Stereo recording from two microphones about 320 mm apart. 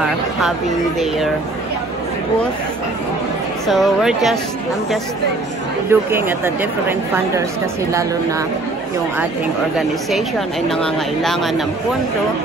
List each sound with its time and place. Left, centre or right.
0.0 s speech: centre
3.6 s speech: centre
5.9 s speech: centre
10.7 s speech: centre